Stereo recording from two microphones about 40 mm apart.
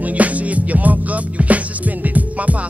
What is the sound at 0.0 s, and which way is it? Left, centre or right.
Music, right.